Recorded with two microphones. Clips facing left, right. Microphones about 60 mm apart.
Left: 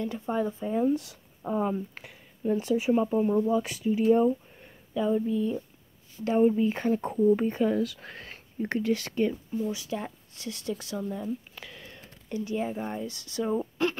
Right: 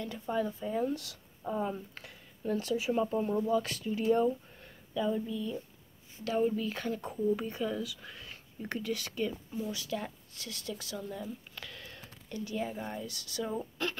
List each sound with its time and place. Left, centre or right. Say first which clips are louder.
0.0 s speech: left 4 dB; left
2.4 s speech: left 6 dB; centre
5.2 s speech: left 8 dB; left
8.8 s speech: left 7 dB; left
11.0 s speech: left 7 dB; centre